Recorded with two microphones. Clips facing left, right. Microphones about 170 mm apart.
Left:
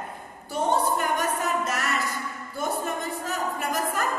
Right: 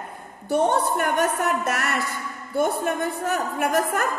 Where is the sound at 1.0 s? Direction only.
60° right (ahead or behind).